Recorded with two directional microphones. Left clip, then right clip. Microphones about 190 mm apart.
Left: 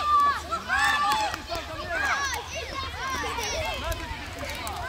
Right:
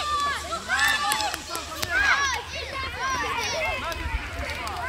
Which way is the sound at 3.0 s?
65° left (ahead or behind).